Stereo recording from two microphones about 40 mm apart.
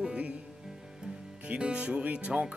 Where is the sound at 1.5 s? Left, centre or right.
Right.